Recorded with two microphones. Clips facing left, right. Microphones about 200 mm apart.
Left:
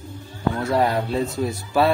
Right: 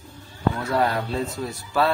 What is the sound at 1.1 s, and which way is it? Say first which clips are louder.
Speech: left 4 dB; 15° left (ahead or behind).